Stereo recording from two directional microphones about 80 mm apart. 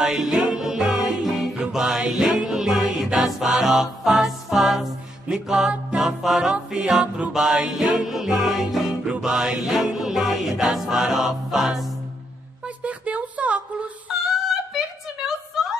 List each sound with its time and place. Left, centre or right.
0.0 s music: centre
12.6 s a sound: centre
14.2 s female singing: centre